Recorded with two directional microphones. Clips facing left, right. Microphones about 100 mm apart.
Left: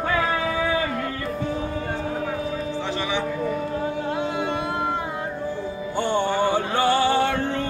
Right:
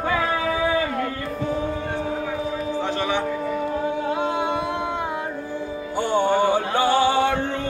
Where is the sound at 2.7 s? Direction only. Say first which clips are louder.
Right 4 dB; 50° right (ahead or behind).